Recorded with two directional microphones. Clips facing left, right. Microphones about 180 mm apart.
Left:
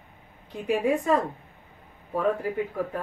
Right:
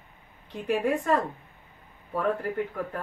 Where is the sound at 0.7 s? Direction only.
5° left (ahead or behind).